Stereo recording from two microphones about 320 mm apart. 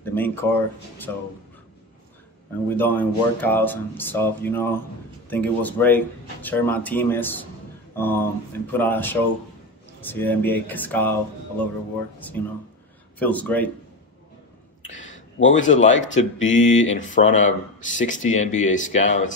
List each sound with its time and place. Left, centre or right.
0.0 s speech: centre
2.8 s speech: centre
14.9 s a sound: left
16.2 s speech: left